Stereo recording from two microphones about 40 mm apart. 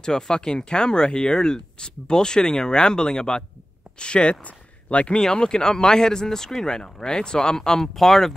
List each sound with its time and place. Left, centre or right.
0.0 s speech: centre
4.5 s a sound: left
5.2 s speech: centre